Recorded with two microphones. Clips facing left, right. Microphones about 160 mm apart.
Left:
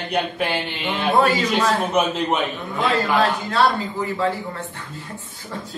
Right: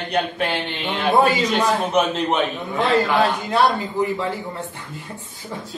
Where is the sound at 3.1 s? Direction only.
15° right (ahead or behind).